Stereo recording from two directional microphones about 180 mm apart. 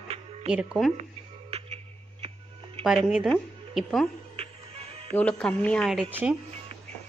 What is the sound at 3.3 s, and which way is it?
Speech, centre (ahead or behind).